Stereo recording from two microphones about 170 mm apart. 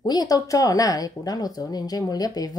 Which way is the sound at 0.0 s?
25° left (ahead or behind).